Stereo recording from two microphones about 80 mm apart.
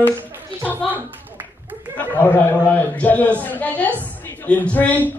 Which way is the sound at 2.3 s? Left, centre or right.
Centre.